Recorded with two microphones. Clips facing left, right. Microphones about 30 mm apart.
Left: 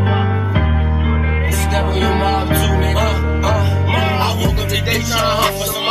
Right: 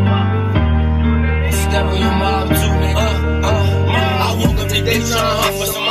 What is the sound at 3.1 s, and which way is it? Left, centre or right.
Music, centre.